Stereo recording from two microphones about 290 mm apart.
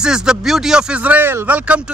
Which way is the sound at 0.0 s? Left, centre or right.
Centre.